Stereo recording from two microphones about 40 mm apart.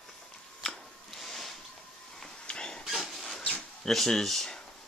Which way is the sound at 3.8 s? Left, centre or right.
Centre.